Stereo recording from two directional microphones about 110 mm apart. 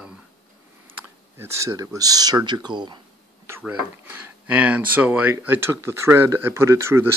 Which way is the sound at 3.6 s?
15° right (ahead or behind).